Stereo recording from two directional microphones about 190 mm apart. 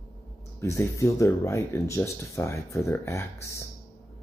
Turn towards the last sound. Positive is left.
turn(degrees=15)  # may be behind; listen again after turning